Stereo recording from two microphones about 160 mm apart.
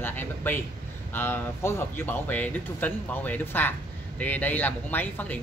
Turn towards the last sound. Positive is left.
turn(degrees=10)  # may be behind; listen again after turning